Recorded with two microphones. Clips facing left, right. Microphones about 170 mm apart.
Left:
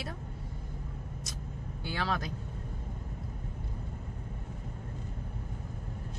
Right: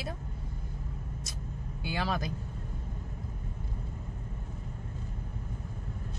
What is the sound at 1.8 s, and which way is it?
Speech, 10° right (ahead or behind).